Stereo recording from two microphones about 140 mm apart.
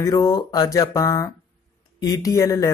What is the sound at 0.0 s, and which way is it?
Speech, 25° left (ahead or behind).